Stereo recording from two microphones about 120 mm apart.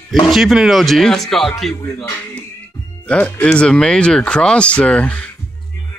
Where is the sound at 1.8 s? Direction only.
15° left (ahead or behind).